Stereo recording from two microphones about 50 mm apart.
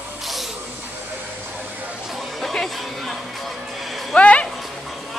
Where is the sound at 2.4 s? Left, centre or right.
Centre.